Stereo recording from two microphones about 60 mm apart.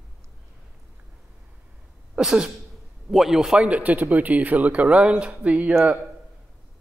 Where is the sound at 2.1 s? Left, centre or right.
Centre.